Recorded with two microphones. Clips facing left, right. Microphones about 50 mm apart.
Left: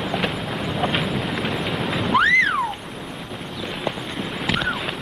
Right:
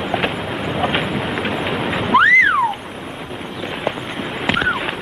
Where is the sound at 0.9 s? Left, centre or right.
Centre.